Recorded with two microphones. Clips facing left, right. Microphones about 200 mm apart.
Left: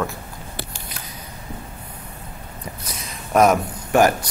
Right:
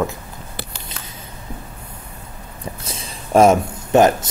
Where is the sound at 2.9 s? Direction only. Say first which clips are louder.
Right 3 dB; 30° right (ahead or behind).